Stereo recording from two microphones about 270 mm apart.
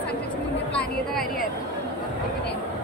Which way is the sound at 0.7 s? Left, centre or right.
Centre.